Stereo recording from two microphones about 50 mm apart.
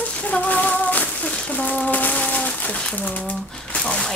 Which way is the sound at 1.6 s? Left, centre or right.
Left.